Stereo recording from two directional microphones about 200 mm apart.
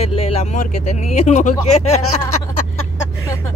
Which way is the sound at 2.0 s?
90° left.